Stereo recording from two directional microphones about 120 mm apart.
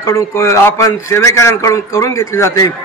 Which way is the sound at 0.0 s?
25° left (ahead or behind).